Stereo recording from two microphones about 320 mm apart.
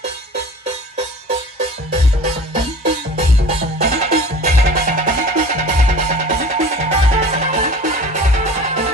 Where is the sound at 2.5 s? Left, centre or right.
Right.